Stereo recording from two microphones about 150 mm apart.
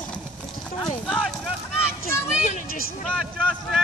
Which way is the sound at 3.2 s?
Centre (ahead or behind).